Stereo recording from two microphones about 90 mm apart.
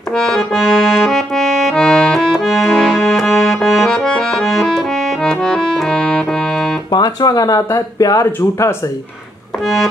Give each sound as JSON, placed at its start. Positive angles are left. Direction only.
{"t": 0.1, "sound": "accordion", "side_deg": 10}
{"t": 6.9, "sound": "speech", "side_deg": 45}